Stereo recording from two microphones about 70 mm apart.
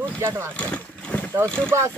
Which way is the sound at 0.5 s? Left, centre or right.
Centre.